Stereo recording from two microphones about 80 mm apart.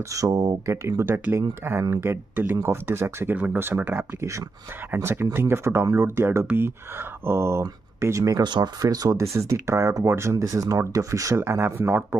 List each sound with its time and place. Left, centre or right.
0.1 s speech: right
8.4 s speech: right
8.8 s speech: right
10.3 s speech: right